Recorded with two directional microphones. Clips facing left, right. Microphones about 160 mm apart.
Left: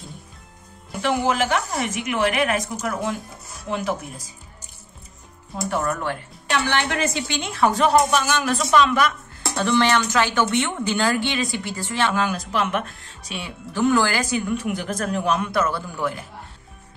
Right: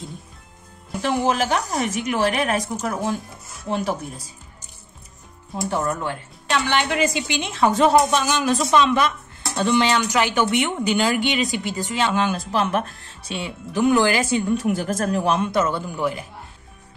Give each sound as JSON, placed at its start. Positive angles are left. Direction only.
{"t": 1.0, "sound": "a woman's voice", "side_deg": -30}
{"t": 5.7, "sound": "a woman's voice", "side_deg": -20}
{"t": 12.5, "sound": "a woman's voice", "side_deg": -35}
{"t": 14.6, "sound": "a woman's voice", "side_deg": -45}